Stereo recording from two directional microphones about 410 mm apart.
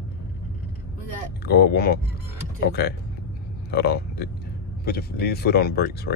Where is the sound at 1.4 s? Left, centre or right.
Left.